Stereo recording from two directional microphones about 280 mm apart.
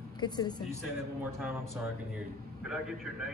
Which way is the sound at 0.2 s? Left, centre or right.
Centre.